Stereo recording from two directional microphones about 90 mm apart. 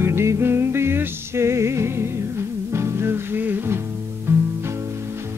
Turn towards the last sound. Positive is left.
turn(degrees=-25)  # may be behind; listen again after turning